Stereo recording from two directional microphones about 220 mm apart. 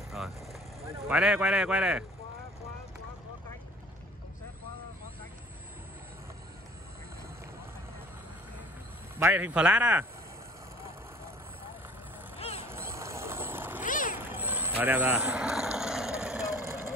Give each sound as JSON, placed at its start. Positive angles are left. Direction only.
{"t": 0.1, "sound": "vehicle", "side_deg": 0}
{"t": 1.0, "sound": "a man's voice", "side_deg": -5}
{"t": 9.1, "sound": "speech", "side_deg": -10}
{"t": 12.4, "sound": "vehicle", "side_deg": 25}
{"t": 12.6, "sound": "cat", "side_deg": -10}
{"t": 13.8, "sound": "cat", "side_deg": 35}
{"t": 14.3, "sound": "vehicle", "side_deg": -10}